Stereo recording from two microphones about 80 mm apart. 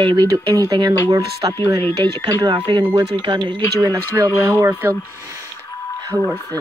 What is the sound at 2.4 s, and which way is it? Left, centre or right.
Speech, right.